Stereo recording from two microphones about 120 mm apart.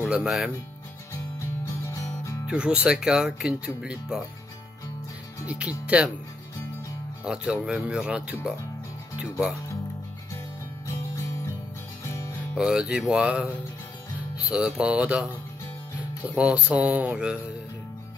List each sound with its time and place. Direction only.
0.0 s speech: 10° right (ahead or behind)
1.9 s music: 25° left (ahead or behind)
2.4 s speech: 10° right (ahead or behind)
5.5 s speech: 10° right (ahead or behind)
7.2 s speech: 5° right (ahead or behind)
12.1 s music: 25° left (ahead or behind)
12.5 s speech: 5° right (ahead or behind)